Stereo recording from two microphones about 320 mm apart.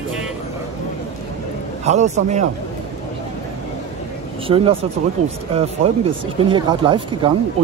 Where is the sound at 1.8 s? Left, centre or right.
Right.